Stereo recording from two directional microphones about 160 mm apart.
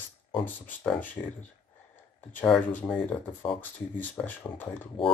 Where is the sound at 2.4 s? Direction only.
10° left (ahead or behind).